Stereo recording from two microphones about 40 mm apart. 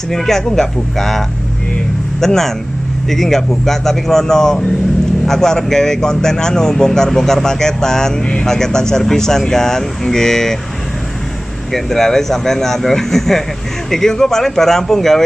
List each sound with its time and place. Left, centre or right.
0.1 s a man's voice: centre
11.7 s a man's voice: centre